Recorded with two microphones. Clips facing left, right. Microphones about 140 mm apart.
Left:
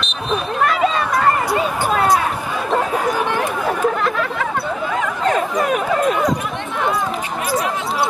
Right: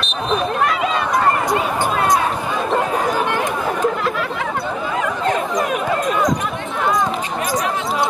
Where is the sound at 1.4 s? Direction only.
10° left (ahead or behind).